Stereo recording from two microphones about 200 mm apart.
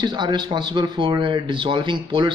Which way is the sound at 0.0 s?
20° right (ahead or behind).